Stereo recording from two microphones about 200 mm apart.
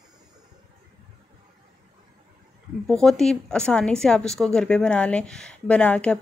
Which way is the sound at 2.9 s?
Centre (ahead or behind).